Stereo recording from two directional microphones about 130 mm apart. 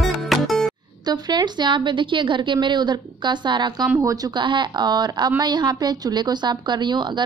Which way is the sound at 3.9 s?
25° right (ahead or behind).